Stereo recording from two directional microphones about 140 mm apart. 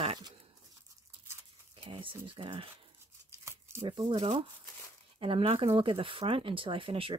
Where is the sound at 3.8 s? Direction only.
35° right (ahead or behind).